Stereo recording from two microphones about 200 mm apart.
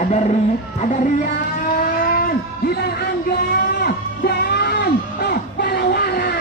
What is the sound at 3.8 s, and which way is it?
Music, 50° left (ahead or behind).